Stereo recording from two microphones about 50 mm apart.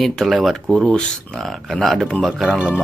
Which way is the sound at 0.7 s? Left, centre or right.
Centre.